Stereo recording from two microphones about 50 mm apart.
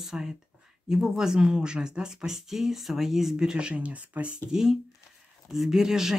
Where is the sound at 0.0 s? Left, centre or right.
Centre; by 4.4 s right.